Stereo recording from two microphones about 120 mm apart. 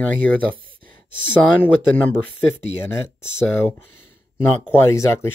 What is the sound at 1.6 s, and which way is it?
Speech, 15° left (ahead or behind).